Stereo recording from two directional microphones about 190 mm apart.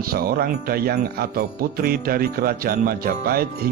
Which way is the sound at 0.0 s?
50° right (ahead or behind).